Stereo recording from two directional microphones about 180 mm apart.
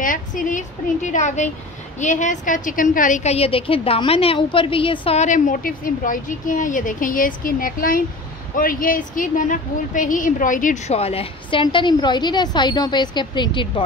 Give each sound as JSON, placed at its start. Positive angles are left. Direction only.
{"t": 0.0, "sound": "a woman's voice", "side_deg": 50}
{"t": 3.3, "sound": "a woman's voice", "side_deg": 30}